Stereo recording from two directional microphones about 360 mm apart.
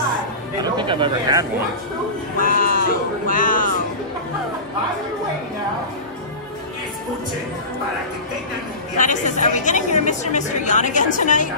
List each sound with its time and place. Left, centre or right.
0.7 s speech: centre
2.4 s a woman's voice: left
8.9 s a woman's voice: left